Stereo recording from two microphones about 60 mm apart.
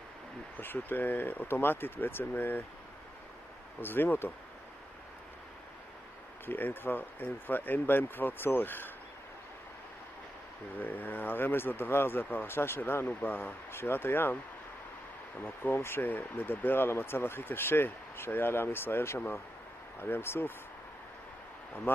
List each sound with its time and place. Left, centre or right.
0.6 s speech: left
3.8 s speech: left
6.4 s speech: left
10.8 s speech: left
15.4 s speech: left
21.9 s speech: left